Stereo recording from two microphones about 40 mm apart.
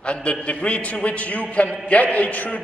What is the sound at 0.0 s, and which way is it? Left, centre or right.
A man's voice, left.